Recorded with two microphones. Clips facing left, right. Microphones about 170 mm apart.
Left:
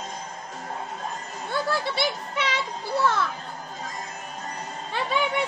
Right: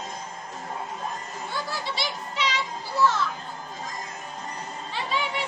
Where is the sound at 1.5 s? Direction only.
55° left (ahead or behind).